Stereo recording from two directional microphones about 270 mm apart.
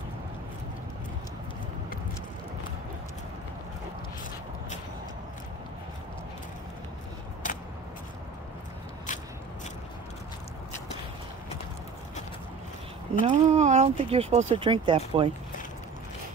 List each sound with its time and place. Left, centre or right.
13.2 s speech: right